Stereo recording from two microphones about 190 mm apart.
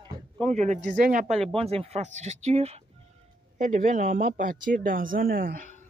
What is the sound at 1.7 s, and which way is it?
Speech, 35° right (ahead or behind).